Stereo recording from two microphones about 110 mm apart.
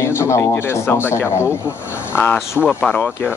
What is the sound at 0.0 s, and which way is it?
A man's voice, 25° left (ahead or behind).